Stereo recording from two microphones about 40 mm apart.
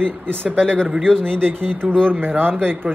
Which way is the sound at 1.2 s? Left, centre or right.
Right.